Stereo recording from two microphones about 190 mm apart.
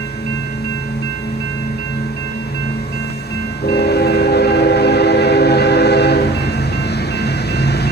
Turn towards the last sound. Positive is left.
turn(degrees=60)  # may be behind; listen again after turning